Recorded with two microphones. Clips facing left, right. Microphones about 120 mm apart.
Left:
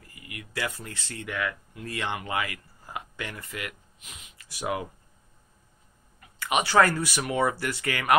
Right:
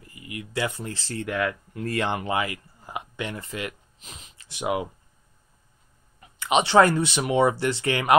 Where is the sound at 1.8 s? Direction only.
50° right (ahead or behind).